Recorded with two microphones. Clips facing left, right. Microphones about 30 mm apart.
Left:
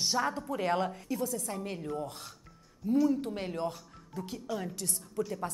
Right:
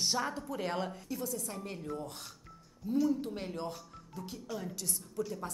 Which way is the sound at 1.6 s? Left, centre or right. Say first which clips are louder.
Left 4 dB; centre.